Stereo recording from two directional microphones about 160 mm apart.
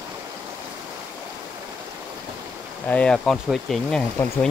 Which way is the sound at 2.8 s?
10° left (ahead or behind).